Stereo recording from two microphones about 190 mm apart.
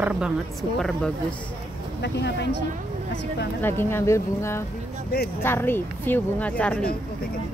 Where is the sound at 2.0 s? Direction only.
65° left (ahead or behind).